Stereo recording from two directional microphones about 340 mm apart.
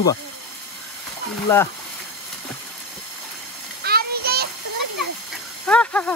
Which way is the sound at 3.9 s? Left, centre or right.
Right.